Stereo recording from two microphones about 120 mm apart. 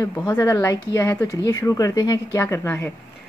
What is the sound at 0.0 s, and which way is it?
A woman's voice, 30° left (ahead or behind).